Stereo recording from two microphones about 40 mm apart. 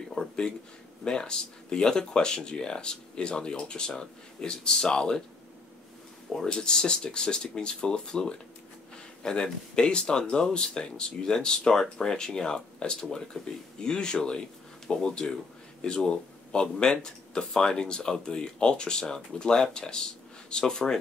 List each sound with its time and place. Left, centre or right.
0.1 s a sound: centre
1.0 s speech: centre
6.4 s speech: left